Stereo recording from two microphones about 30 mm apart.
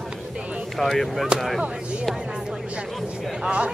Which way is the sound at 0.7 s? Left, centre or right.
Centre.